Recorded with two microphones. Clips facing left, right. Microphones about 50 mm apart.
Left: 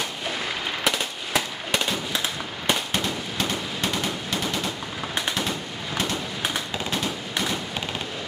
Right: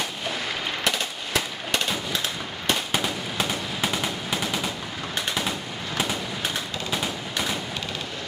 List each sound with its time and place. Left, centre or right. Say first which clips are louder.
0.8 s fireworks: left 2 dB; centre
2.9 s machine gun: even; centre
6.9 s a sound: even; centre